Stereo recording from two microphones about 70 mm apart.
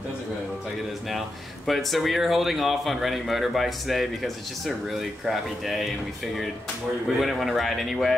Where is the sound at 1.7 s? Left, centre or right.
Centre.